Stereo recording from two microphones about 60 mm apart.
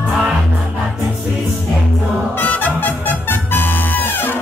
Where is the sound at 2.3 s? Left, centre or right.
Left.